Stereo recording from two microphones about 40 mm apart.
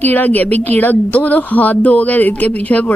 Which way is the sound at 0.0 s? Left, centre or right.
Left.